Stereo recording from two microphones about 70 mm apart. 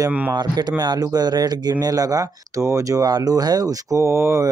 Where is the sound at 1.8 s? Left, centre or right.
Right.